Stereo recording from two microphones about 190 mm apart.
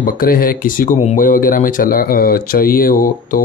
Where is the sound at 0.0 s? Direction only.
50° left (ahead or behind).